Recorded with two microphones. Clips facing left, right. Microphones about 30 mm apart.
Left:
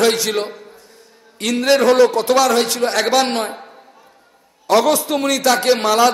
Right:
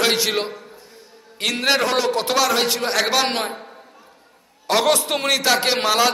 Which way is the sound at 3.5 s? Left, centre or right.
Centre.